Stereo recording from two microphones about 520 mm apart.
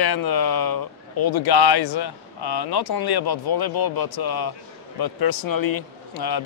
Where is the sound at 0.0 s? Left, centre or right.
Left.